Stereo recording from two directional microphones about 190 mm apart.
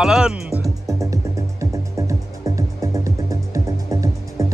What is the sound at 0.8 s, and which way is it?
Music, 15° right (ahead or behind).